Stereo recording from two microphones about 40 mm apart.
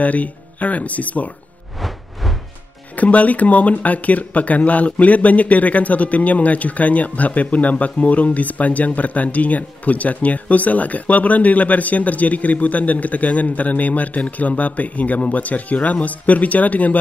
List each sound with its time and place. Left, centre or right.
0.0 s speech: left
1.8 s music: centre
3.0 s speech: left